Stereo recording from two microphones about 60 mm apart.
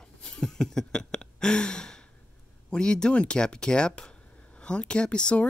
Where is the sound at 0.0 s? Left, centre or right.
Centre.